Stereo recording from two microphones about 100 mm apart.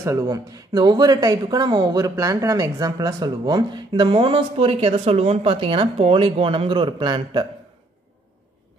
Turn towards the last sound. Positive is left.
turn(degrees=-50)  # may be behind; listen again after turning